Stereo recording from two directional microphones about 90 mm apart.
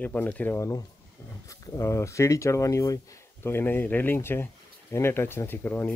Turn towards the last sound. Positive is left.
turn(degrees=25)  # may be behind; listen again after turning